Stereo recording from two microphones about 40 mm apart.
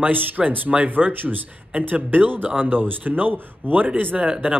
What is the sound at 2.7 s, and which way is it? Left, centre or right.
A man's voice, right.